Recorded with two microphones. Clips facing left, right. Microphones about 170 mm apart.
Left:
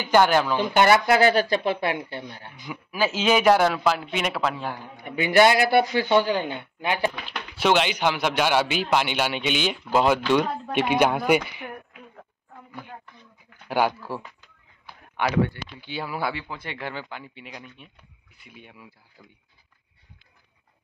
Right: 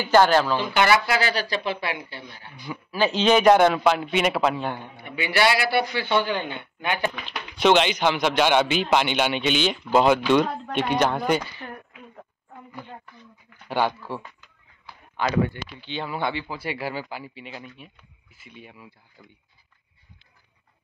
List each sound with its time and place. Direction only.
0.0 s a man's voice: 15° left (ahead or behind)
0.7 s a man's voice: 50° left (ahead or behind)
2.6 s speech: 15° left (ahead or behind)
5.0 s a man's voice: 45° left (ahead or behind)
7.2 s a man's voice: 5° left (ahead or behind)
13.7 s a man's voice: 10° left (ahead or behind)
15.8 s speech: 10° left (ahead or behind)